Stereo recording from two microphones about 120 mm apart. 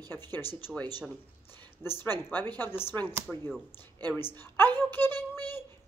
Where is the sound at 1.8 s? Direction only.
20° left (ahead or behind).